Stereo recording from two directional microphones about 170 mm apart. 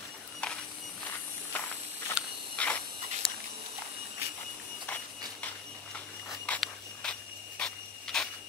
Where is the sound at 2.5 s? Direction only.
10° left (ahead or behind).